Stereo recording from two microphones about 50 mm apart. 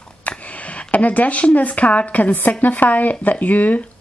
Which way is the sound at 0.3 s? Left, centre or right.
Left.